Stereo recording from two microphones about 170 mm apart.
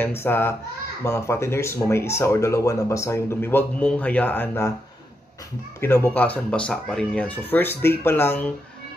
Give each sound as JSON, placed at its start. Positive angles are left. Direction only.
{"t": 0.0, "sound": "speech", "side_deg": 15}
{"t": 5.8, "sound": "speech", "side_deg": 15}